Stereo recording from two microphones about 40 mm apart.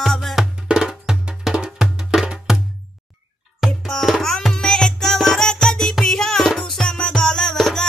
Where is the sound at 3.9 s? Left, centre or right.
Centre.